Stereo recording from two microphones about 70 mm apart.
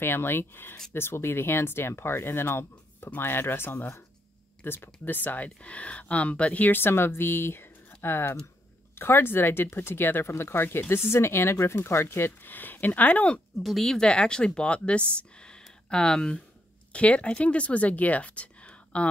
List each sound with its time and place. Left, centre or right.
0.0 s speech: left
13.6 s speech: centre